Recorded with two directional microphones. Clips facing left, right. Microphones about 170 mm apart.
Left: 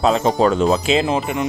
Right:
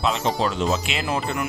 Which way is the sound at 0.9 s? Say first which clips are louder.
Left 8 dB; 25° left (ahead or behind).